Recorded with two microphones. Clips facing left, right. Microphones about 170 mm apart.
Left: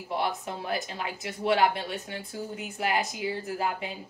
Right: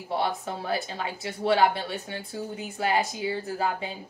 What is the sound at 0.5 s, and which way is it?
Speech, 30° right (ahead or behind).